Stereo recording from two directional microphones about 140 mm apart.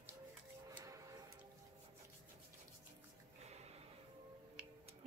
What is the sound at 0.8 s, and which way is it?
Music, 25° right (ahead or behind).